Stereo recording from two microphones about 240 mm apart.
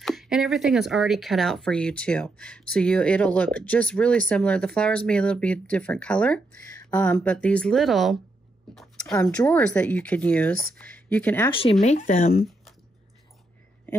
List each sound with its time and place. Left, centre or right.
0.0 s speech: centre
8.7 s a sound: centre
9.1 s speech: centre
11.8 s speech: left